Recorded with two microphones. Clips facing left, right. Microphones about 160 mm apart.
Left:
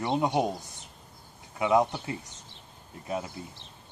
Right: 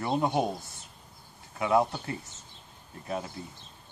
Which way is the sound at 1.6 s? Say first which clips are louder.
Left 1 dB; 15° left (ahead or behind).